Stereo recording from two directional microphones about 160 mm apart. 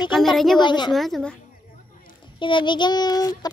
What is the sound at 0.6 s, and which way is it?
Speech, 30° left (ahead or behind).